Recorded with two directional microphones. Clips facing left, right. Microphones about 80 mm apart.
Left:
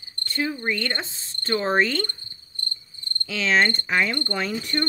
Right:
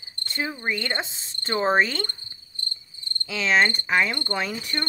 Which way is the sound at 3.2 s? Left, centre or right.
Centre.